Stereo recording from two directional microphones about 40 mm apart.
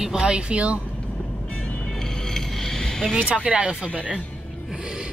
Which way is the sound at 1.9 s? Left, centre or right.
Centre.